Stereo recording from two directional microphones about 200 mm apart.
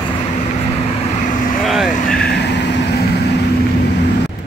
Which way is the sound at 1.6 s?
Centre (ahead or behind).